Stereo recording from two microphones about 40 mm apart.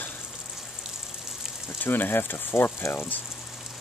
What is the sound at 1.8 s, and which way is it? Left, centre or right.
Speech, left.